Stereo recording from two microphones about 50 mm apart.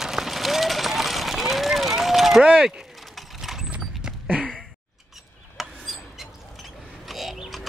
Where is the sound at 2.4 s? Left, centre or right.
Centre.